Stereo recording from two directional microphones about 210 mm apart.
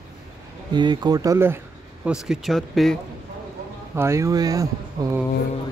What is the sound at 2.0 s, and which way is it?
Speech, 5° right (ahead or behind).